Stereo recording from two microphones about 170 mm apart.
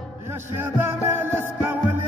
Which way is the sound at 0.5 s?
10° right (ahead or behind).